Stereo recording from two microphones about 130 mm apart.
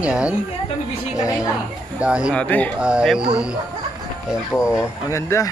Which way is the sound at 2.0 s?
10° right (ahead or behind).